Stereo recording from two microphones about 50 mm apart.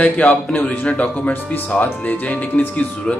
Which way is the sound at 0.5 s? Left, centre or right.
Left.